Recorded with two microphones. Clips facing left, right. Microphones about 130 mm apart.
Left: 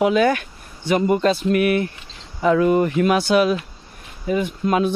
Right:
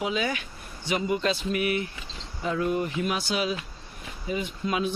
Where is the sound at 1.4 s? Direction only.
60° left (ahead or behind).